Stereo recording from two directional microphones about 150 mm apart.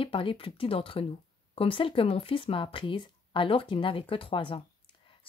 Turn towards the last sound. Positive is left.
turn(degrees=35)  # may be behind; listen again after turning